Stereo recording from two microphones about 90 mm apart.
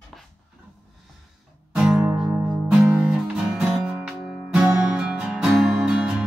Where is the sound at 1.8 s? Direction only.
10° right (ahead or behind).